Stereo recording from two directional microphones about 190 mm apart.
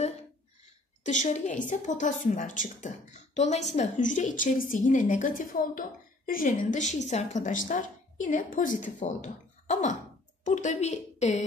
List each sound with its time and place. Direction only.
1.0 s a woman's voice: 40° left (ahead or behind)